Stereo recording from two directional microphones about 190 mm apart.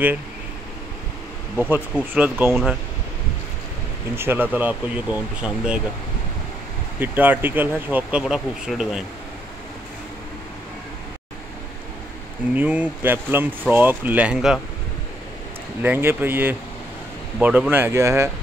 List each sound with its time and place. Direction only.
1.7 s speech: 10° right (ahead or behind)
4.1 s speech: 10° right (ahead or behind)
7.0 s speech: 10° right (ahead or behind)
12.5 s speech: 10° right (ahead or behind)
15.8 s speech: 10° right (ahead or behind)